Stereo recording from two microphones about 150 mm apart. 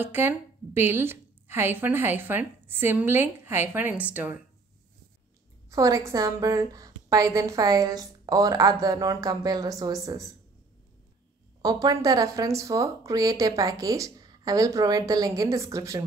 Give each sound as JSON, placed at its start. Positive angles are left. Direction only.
{"t": 0.0, "sound": "a woman's voice", "side_deg": -15}
{"t": 5.7, "sound": "speech", "side_deg": -20}
{"t": 11.6, "sound": "speech", "side_deg": -25}